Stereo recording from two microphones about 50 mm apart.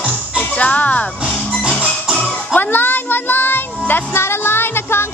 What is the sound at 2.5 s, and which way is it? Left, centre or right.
Child singing, left.